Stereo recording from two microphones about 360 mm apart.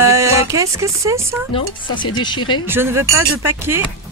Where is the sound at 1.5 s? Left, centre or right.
Centre.